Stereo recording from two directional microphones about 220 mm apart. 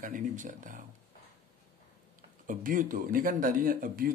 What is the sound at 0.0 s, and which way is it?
Speech, 35° right (ahead or behind).